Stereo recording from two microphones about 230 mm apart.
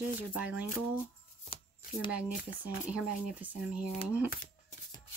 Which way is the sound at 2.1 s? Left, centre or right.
Centre.